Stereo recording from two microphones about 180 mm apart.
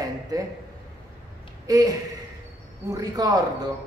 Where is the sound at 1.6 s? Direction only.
20° right (ahead or behind).